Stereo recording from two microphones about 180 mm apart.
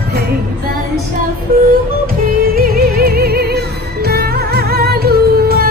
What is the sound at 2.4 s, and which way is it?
Music, 55° right (ahead or behind).